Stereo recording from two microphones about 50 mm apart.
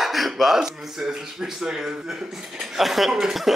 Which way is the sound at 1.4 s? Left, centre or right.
Centre.